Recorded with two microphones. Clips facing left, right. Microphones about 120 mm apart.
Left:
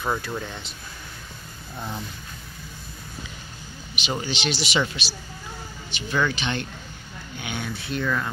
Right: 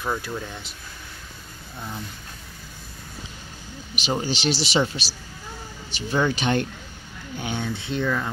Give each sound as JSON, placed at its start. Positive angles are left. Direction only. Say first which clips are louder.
{"t": 0.0, "sound": "speech", "louder": "left 1 dB", "side_deg": 10}
{"t": 0.4, "sound": "speech", "louder": "left 1 dB", "side_deg": -5}
{"t": 3.9, "sound": "a man's voice", "louder": "right 3 dB", "side_deg": -40}
{"t": 7.3, "sound": "speech", "louder": "right 4 dB", "side_deg": -35}